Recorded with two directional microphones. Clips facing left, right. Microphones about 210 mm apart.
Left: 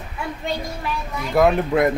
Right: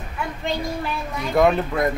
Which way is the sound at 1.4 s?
5° left (ahead or behind).